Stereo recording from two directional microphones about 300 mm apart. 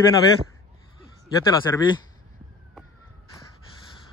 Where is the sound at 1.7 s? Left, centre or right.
Centre.